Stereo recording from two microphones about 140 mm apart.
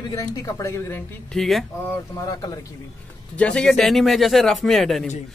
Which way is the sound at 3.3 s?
5° left (ahead or behind).